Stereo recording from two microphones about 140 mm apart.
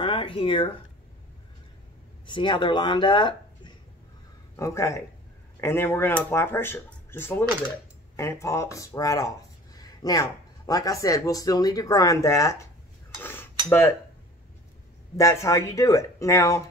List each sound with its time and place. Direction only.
0.0 s a sound: 40° left (ahead or behind)
2.2 s speech: 35° left (ahead or behind)
4.6 s speech: 20° left (ahead or behind)
9.8 s a sound: 25° left (ahead or behind)
10.7 s speech: 25° left (ahead or behind)
13.2 s cutlery: 15° left (ahead or behind)
13.7 s speech: 15° left (ahead or behind)
15.1 s speech: 20° left (ahead or behind)